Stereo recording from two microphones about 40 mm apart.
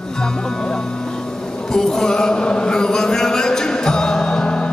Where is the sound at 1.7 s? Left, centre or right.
Centre.